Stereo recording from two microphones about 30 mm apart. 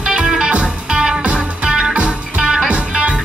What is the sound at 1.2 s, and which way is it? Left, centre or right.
Music, right.